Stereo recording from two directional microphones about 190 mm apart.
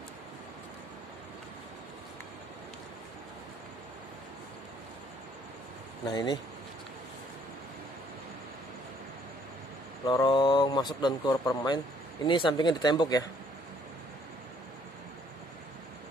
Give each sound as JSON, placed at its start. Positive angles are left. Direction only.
{"t": 6.0, "sound": "speech", "side_deg": 20}
{"t": 10.0, "sound": "speech", "side_deg": 25}